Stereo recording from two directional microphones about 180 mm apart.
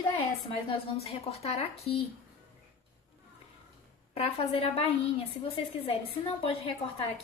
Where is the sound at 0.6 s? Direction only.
35° left (ahead or behind).